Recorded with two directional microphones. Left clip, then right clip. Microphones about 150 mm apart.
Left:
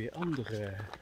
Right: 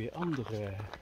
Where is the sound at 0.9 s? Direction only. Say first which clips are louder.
Even; 65° left (ahead or behind).